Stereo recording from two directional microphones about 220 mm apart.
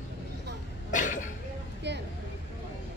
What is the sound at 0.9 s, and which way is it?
Cough, 35° left (ahead or behind).